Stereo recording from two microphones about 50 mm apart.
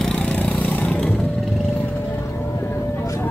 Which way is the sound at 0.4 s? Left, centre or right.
Left.